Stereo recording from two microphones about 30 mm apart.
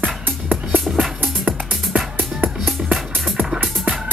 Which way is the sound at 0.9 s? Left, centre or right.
Centre.